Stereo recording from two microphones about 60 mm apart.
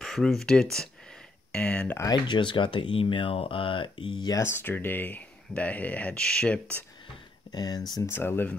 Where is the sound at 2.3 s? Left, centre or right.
Left.